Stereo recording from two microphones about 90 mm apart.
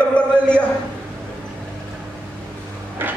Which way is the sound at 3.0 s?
25° right (ahead or behind).